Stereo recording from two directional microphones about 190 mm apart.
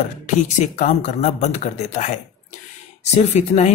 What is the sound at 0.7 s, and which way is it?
Speech, 40° left (ahead or behind).